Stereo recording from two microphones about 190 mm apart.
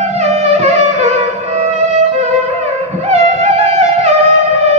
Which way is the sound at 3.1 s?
35° right (ahead or behind).